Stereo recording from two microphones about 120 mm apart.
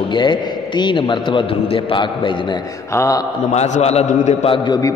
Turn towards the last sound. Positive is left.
turn(degrees=35)  # may be behind; listen again after turning